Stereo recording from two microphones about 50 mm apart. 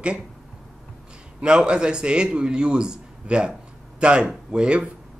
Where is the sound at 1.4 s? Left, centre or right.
Centre.